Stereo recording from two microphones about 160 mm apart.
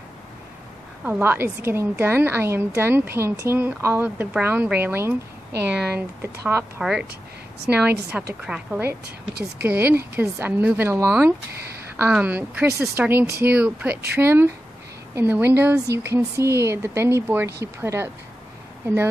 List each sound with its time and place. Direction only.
1.0 s a woman's voice: 10° right (ahead or behind)
6.8 s a woman's voice: 5° right (ahead or behind)
11.5 s speech: 85° right
12.0 s a woman's voice: 10° right (ahead or behind)